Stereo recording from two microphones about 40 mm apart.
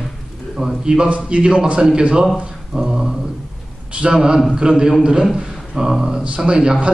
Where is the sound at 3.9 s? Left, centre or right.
Right; by 6.2 s centre.